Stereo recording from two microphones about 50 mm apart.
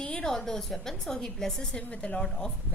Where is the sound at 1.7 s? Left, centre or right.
Left.